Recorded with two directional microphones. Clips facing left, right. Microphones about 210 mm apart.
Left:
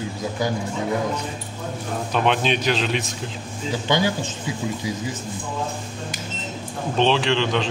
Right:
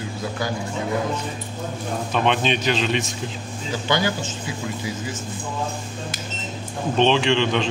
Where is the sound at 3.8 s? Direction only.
20° left (ahead or behind).